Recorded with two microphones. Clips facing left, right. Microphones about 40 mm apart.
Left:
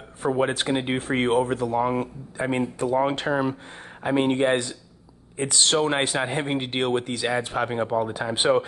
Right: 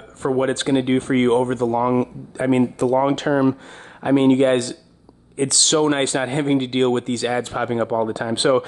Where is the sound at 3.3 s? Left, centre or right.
Centre.